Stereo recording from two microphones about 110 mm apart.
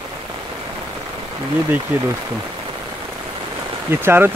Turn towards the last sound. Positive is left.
turn(degrees=-20)  # may be behind; listen again after turning